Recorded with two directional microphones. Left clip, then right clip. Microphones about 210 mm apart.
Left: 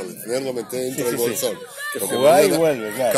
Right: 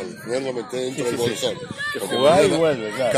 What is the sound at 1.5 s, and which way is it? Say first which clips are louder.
Speech: right 1 dB; 50° left (ahead or behind).